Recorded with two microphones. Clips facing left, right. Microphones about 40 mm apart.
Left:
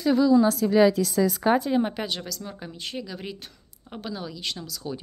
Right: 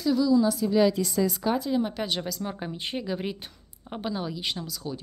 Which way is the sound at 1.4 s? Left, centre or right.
Left.